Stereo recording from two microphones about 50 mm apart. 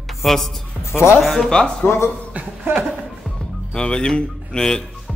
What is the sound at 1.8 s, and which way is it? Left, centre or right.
Speech, left.